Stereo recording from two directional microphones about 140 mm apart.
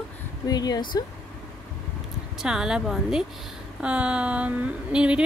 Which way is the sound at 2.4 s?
5° right (ahead or behind).